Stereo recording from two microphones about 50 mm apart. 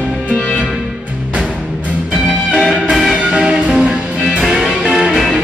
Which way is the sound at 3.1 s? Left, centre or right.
Centre.